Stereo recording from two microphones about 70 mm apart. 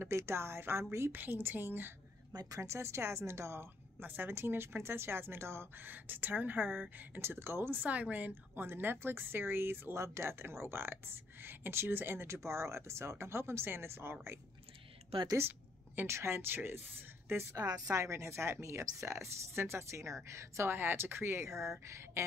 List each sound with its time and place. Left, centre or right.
0.0 s a woman's voice: right
1.1 s a woman's voice: right
2.6 s a woman's voice: right
7.8 s a woman's voice: right
16.1 s a woman's voice: right
17.6 s a woman's voice: right